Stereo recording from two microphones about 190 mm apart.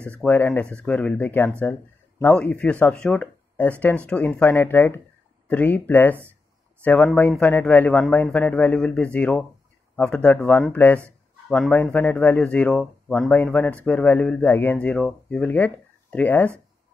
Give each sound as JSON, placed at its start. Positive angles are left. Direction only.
{"t": 0.0, "sound": "speech", "side_deg": 5}